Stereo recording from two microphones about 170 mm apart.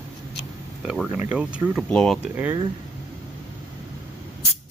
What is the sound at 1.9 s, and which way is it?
Speech, 5° left (ahead or behind).